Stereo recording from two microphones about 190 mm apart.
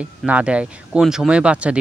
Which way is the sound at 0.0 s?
5° right (ahead or behind).